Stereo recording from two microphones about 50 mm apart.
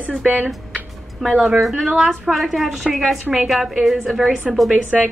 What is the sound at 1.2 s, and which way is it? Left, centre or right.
Speech, centre.